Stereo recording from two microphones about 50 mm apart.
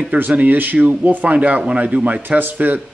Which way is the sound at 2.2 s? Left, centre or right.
Right.